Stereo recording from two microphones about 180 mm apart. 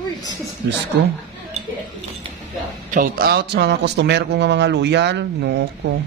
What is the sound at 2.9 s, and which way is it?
A man's voice, 55° right (ahead or behind).